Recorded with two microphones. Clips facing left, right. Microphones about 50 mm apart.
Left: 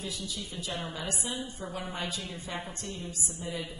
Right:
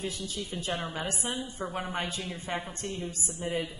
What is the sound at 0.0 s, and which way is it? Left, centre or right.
A woman's voice, right.